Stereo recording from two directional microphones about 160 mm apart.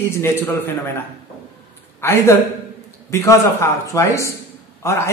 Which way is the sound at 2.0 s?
15° left (ahead or behind).